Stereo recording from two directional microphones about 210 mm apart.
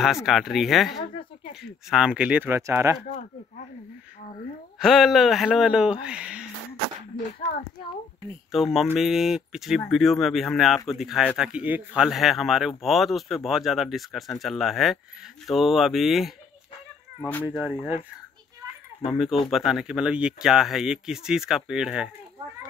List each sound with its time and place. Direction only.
0.0 s speech: centre (ahead or behind)
3.1 s speech: 35° left (ahead or behind)
4.7 s speech: centre (ahead or behind)
8.3 s speech: centre (ahead or behind)
17.5 s speech: 5° right (ahead or behind)
19.0 s speech: centre (ahead or behind)